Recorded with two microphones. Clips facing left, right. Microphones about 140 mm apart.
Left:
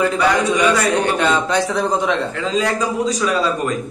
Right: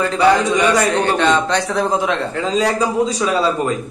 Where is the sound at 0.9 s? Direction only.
10° left (ahead or behind).